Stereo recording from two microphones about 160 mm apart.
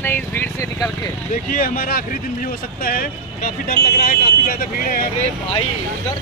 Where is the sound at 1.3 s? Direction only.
60° left (ahead or behind).